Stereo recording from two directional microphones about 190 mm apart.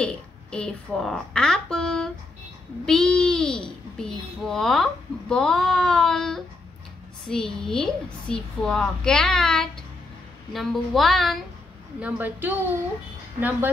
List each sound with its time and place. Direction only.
0.0 s a woman's voice: 5° left (ahead or behind)
12.0 s a woman's voice: 10° right (ahead or behind)